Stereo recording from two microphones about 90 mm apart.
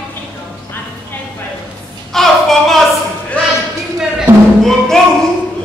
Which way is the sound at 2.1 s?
5° left (ahead or behind).